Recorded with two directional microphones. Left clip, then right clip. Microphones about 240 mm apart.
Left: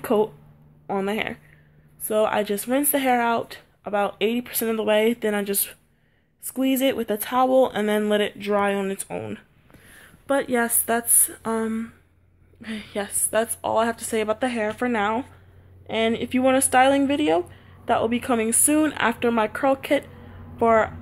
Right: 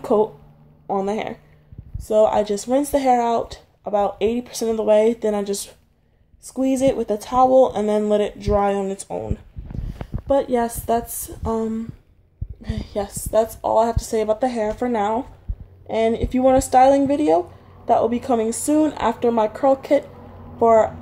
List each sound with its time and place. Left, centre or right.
0.0 s a woman's voice: left